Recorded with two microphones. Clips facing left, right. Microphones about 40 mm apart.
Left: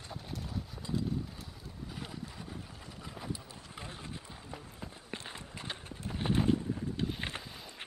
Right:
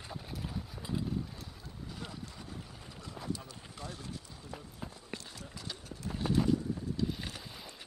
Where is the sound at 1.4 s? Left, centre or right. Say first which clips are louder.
Left 1 dB; centre.